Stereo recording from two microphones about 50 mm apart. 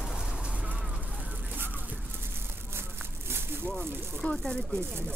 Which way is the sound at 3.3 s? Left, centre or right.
Right.